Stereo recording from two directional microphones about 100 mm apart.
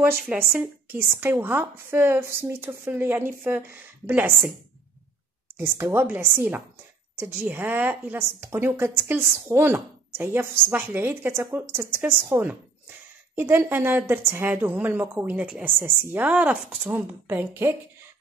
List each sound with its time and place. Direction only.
0.3 s speech: 20° right (ahead or behind)
5.8 s speech: 25° right (ahead or behind)